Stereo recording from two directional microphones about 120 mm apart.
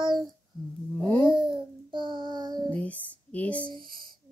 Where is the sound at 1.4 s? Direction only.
45° right (ahead or behind).